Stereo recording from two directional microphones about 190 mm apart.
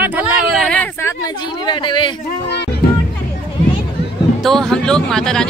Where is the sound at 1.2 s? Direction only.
25° left (ahead or behind).